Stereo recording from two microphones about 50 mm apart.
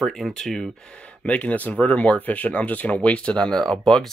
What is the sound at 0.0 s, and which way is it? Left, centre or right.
Speech, centre.